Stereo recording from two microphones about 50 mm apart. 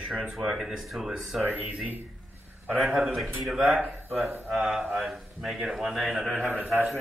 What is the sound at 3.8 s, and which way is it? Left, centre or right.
Speech, right.